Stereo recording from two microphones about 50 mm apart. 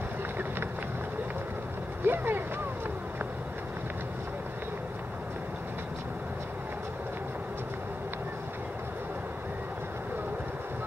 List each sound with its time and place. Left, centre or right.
2.0 s speech: right